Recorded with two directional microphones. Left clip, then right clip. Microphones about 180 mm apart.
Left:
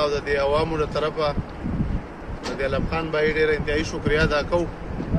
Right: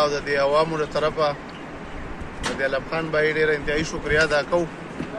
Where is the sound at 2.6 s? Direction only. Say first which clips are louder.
Even; 45° left (ahead or behind).